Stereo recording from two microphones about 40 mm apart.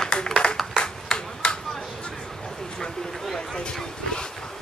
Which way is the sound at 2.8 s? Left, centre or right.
Centre.